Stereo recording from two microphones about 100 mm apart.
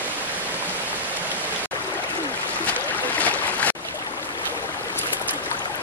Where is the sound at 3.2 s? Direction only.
15° left (ahead or behind).